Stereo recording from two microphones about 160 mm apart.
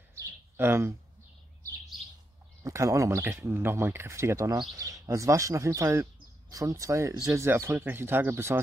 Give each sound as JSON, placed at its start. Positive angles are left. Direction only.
{"t": 0.1, "sound": "bird", "side_deg": -15}
{"t": 2.6, "sound": "speech", "side_deg": -20}